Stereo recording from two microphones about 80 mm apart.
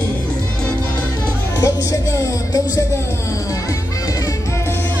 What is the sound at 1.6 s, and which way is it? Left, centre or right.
Music, left.